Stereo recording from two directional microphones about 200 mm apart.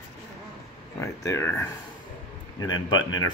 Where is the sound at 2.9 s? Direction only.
20° left (ahead or behind).